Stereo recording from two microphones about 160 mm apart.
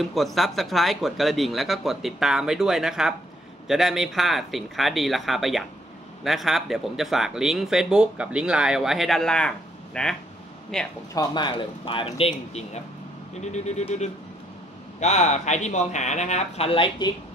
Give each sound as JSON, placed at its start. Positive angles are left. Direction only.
{"t": 0.0, "sound": "speech", "side_deg": 0}
{"t": 11.1, "sound": "speech", "side_deg": 30}
{"t": 13.4, "sound": "speech", "side_deg": 45}